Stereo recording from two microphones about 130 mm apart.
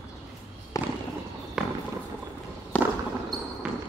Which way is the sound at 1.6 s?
5° right (ahead or behind).